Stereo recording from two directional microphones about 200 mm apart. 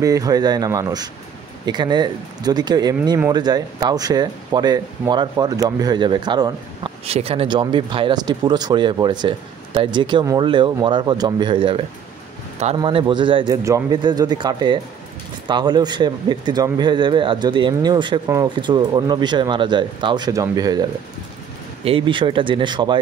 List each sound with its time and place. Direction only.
0.0 s speech: 15° right (ahead or behind)
21.8 s speech: 25° right (ahead or behind)